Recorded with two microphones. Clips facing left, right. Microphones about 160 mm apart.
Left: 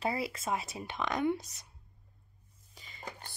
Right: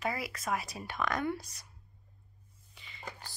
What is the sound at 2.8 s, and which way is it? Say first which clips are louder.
Music: left 1 dB; 40° left (ahead or behind).